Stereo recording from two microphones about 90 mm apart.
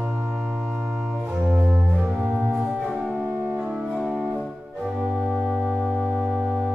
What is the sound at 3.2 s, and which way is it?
Organ, 20° right (ahead or behind).